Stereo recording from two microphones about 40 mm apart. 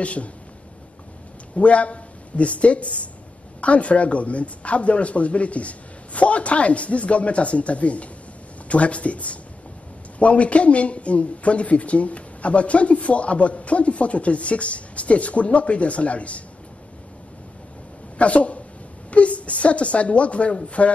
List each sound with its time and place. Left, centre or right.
0.0 s speech: left
1.5 s speech: left
18.1 s speech: left